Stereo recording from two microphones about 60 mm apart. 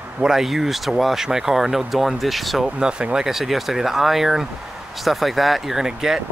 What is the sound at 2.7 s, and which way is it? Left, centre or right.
Speech, centre.